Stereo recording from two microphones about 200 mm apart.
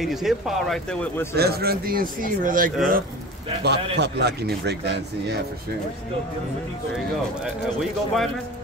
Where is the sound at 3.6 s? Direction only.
60° right (ahead or behind).